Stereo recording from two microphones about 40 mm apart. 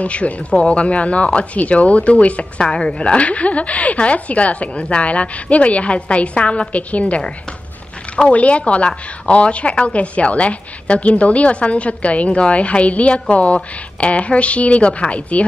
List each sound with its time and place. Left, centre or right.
0.0 s a woman's voice: left
2.6 s a woman's voice: left
8.3 s a woman's voice: left